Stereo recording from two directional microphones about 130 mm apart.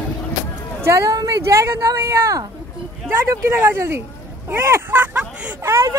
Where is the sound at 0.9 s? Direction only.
25° right (ahead or behind).